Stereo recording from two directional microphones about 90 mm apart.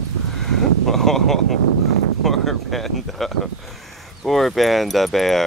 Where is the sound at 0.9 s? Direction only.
5° left (ahead or behind).